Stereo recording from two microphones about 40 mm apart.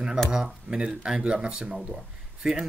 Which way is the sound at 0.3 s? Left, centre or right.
Centre.